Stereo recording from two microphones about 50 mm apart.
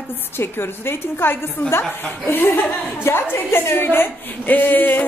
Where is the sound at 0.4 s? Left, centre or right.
Left.